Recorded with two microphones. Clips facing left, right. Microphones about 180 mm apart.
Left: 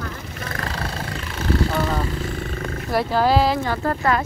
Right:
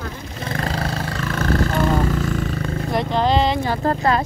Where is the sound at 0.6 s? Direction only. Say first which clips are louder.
Right 5 dB; 30° right (ahead or behind).